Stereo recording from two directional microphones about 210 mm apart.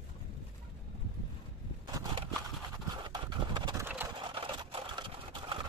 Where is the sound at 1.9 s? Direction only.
25° right (ahead or behind).